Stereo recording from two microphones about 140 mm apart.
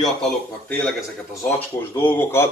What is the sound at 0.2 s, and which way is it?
Speech, 10° left (ahead or behind).